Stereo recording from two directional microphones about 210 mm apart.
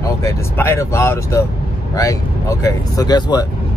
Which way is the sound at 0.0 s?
15° left (ahead or behind).